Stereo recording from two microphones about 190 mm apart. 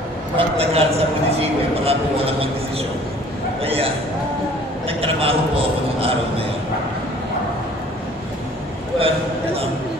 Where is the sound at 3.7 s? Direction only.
30° right (ahead or behind).